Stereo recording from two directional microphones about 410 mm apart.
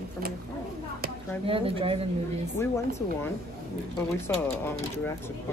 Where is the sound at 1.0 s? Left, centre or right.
Centre.